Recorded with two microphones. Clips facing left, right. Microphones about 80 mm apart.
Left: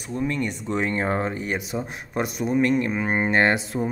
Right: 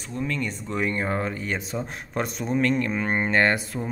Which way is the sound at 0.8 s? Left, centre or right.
Left.